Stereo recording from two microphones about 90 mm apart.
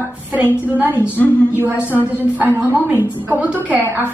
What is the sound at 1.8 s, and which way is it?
Speech, 25° left (ahead or behind).